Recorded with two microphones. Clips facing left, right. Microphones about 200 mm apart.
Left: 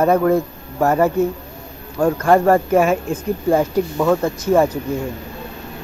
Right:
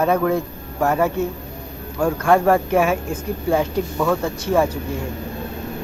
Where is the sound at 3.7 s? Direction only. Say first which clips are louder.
Left 4 dB; 15° left (ahead or behind).